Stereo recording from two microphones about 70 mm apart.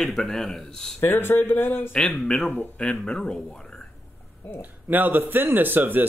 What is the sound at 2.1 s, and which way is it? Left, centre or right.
Speech, centre.